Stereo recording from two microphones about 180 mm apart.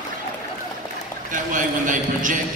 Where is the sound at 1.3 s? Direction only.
45° right (ahead or behind).